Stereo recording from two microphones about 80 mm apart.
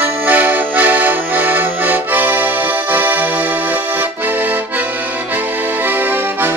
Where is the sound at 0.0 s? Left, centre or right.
Right.